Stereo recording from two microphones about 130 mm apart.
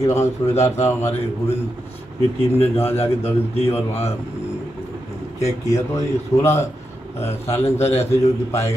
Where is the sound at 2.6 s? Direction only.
50° left (ahead or behind).